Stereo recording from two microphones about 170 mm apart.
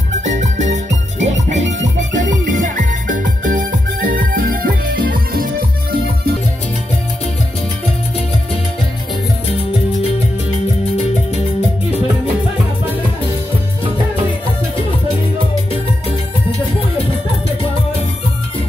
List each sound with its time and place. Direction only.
0.2 s music: 45° right (ahead or behind)